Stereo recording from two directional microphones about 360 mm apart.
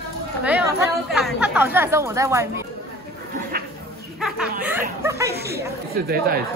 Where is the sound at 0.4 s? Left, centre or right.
Centre.